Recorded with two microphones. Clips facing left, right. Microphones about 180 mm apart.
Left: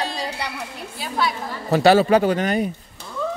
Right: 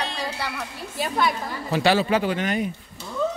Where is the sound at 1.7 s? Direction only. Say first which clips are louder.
Left 6 dB; 45° left (ahead or behind).